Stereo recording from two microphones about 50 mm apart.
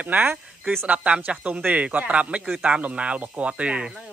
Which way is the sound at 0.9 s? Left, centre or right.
Right.